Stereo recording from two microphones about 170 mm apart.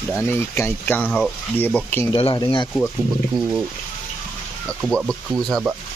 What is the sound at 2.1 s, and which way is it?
Speech, 30° left (ahead or behind).